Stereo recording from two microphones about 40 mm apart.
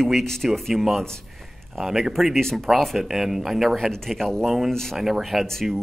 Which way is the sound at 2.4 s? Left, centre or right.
Centre.